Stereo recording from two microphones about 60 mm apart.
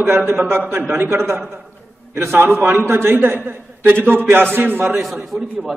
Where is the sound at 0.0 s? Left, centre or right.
Right.